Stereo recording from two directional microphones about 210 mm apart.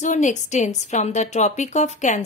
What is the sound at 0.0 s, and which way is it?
A woman's voice, 35° left (ahead or behind).